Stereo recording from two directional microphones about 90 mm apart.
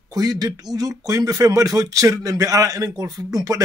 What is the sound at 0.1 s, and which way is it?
A man's voice, 45° right (ahead or behind).